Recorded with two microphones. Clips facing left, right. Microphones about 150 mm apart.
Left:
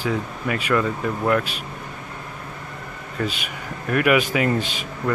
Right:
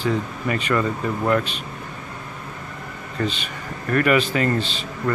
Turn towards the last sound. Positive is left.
turn(degrees=10)  # may be behind; listen again after turning